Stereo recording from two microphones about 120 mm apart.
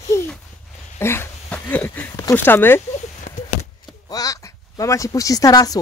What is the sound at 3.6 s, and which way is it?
Speech, 30° left (ahead or behind).